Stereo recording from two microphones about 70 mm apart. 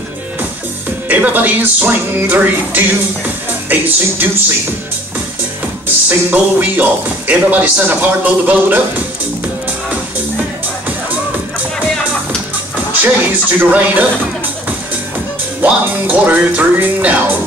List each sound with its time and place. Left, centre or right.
1.0 s speech: right
5.9 s speech: right
13.0 s speech: right
15.6 s speech: right